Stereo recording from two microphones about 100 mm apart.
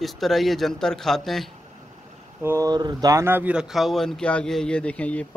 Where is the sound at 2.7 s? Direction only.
45° right (ahead or behind).